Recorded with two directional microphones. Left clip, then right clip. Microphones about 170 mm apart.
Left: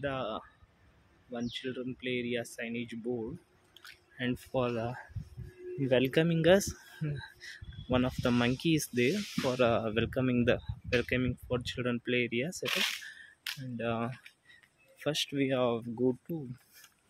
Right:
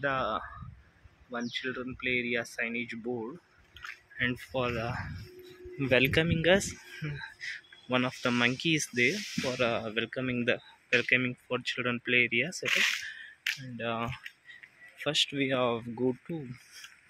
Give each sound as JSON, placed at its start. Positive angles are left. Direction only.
{"t": 0.0, "sound": "speech", "side_deg": 10}
{"t": 4.2, "sound": "speech", "side_deg": 35}
{"t": 5.8, "sound": "speech", "side_deg": 20}
{"t": 6.2, "sound": "speech", "side_deg": 45}
{"t": 11.0, "sound": "speech", "side_deg": 35}
{"t": 12.6, "sound": "speech", "side_deg": 10}
{"t": 13.7, "sound": "speech", "side_deg": 40}
{"t": 15.0, "sound": "speech", "side_deg": 30}
{"t": 15.9, "sound": "speech", "side_deg": -5}